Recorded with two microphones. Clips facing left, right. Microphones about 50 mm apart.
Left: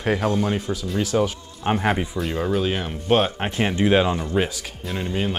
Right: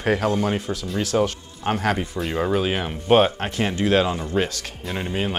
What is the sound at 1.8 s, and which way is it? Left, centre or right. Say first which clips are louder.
Speech: even; centre.